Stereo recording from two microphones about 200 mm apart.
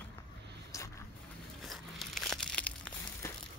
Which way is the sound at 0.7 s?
15° left (ahead or behind).